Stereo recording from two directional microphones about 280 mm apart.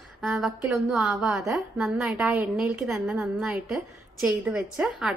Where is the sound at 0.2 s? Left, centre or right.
Centre.